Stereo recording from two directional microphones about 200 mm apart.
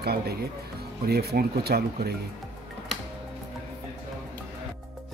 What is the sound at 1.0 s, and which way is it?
Speech, 50° right (ahead or behind).